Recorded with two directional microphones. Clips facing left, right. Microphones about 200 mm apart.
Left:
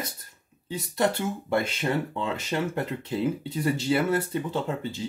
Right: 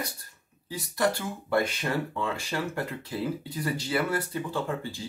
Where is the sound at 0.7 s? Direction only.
20° left (ahead or behind).